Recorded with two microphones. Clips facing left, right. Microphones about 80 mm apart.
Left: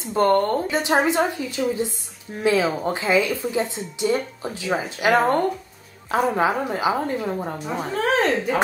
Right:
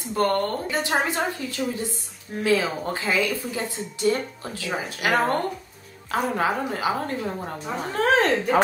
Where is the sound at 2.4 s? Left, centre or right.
Left.